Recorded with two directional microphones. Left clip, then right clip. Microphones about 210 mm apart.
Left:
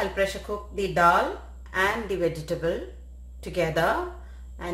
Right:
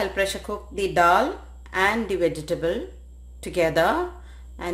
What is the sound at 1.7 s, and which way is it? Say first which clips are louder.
A woman's voice: right 3 dB; 30° right (ahead or behind).